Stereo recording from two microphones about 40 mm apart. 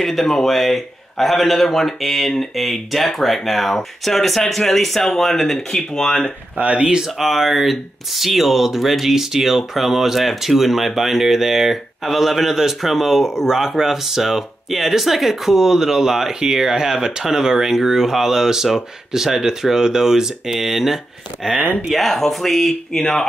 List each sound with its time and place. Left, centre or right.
0.0 s a man's voice: centre
6.6 s speech: right
7.2 s speech: centre
21.9 s speech: centre